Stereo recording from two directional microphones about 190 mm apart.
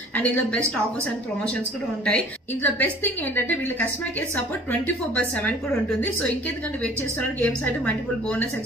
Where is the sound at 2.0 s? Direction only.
10° left (ahead or behind).